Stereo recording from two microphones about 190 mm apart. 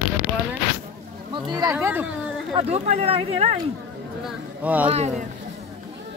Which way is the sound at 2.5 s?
35° right (ahead or behind).